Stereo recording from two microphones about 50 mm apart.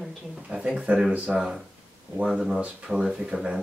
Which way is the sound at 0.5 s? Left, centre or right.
Centre.